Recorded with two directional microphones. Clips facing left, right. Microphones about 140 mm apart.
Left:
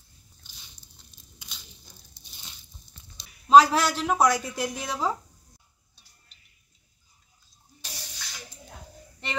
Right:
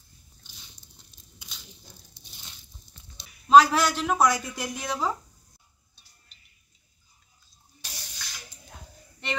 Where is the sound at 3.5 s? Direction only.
30° left (ahead or behind).